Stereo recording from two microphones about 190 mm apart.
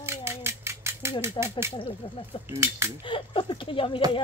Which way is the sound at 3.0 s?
25° left (ahead or behind).